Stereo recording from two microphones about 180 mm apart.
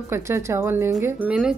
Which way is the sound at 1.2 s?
5° right (ahead or behind).